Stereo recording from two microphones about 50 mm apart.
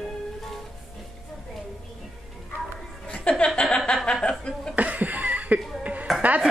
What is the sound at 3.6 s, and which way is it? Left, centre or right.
Chuckle, centre.